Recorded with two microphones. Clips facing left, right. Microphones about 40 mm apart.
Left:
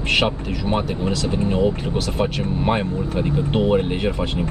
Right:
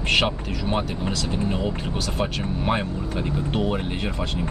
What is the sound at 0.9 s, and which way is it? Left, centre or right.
Speech, left.